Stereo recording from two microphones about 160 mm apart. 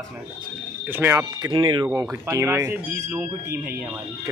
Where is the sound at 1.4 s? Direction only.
30° right (ahead or behind).